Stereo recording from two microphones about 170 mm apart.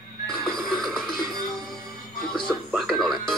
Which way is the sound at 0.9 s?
Centre (ahead or behind).